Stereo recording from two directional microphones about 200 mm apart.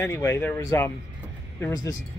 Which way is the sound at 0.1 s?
10° left (ahead or behind).